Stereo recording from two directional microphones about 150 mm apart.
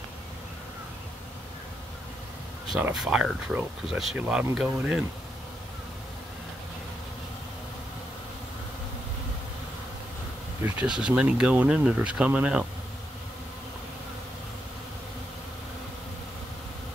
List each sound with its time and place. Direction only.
2.8 s speech: 5° right (ahead or behind)
10.6 s speech: 5° right (ahead or behind)